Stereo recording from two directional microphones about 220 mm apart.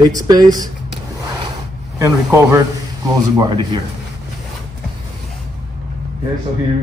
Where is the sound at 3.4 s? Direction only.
20° right (ahead or behind).